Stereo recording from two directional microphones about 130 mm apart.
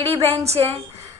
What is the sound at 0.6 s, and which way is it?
Speech, 40° right (ahead or behind).